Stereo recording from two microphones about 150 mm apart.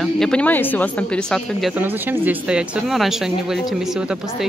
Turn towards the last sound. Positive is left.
turn(degrees=-5)  # may be behind; listen again after turning